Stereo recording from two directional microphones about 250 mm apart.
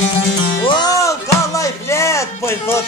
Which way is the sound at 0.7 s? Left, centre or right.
Centre.